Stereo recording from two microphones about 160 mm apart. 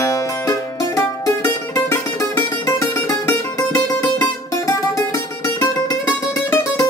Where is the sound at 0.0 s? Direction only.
20° left (ahead or behind).